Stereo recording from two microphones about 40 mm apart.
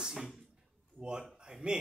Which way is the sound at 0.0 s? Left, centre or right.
Centre.